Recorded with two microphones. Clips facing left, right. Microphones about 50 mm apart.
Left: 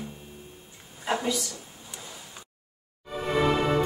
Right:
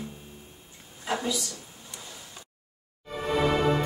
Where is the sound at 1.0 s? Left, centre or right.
Centre.